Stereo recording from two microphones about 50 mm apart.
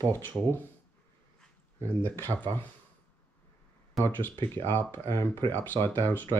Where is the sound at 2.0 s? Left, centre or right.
Left.